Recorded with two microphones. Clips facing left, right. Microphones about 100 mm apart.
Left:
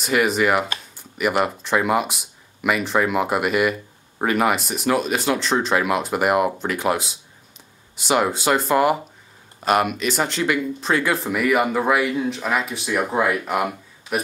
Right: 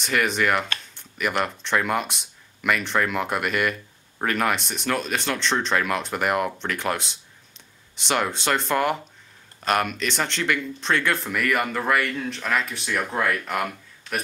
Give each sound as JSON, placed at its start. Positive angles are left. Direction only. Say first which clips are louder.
{"t": 0.0, "sound": "speech", "louder": "left 4 dB", "side_deg": 5}